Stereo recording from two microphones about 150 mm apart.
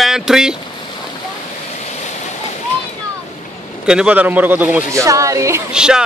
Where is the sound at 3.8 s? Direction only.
5° right (ahead or behind).